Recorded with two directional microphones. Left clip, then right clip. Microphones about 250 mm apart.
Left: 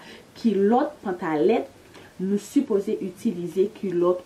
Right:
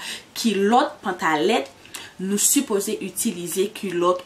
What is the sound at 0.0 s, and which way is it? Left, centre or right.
Speech, centre.